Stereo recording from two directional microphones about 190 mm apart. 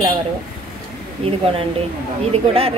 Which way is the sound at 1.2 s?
30° right (ahead or behind).